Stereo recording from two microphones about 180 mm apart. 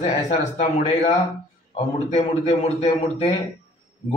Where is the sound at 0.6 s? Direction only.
40° left (ahead or behind).